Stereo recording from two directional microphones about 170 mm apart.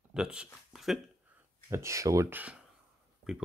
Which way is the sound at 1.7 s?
15° right (ahead or behind).